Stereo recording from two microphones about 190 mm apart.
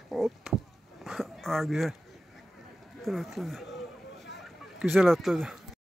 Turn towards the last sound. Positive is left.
turn(degrees=0)  # may be behind; listen again after turning